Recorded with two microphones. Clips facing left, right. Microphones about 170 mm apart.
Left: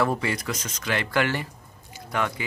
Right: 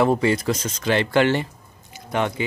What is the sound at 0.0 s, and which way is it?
Speech, 25° right (ahead or behind).